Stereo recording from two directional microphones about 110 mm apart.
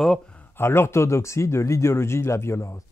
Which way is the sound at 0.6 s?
20° left (ahead or behind).